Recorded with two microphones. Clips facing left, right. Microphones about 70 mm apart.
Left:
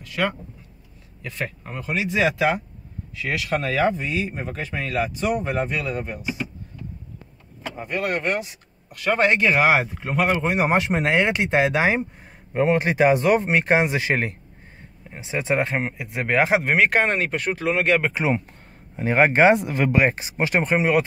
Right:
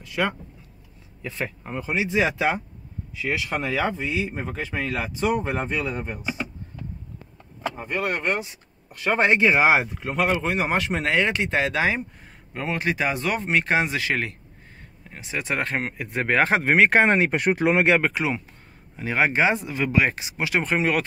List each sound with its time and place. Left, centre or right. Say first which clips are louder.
0.0 s vehicle: left 1 dB; centre
1.4 s speech: even; centre
7.9 s speech: left 2 dB; right
9.8 s speech: left 1 dB; centre
10.4 s speech: left 3 dB; centre
17.3 s speech: right 3 dB; right
18.1 s speech: left 3 dB; left
20.7 s speech: left 3 dB; centre